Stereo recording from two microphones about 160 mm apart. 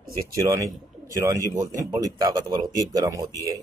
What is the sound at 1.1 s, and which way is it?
Speech, 20° right (ahead or behind).